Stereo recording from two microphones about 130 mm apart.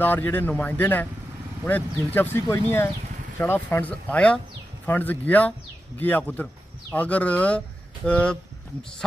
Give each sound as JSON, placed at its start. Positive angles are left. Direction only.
{"t": 0.0, "sound": "speech", "side_deg": 15}